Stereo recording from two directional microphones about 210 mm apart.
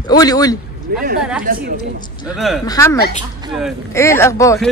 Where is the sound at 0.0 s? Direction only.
20° left (ahead or behind).